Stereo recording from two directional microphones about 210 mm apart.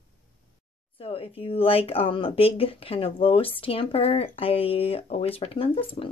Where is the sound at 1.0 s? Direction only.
25° left (ahead or behind).